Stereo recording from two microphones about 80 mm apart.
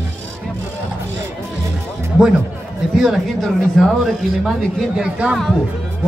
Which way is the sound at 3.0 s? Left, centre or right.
Centre.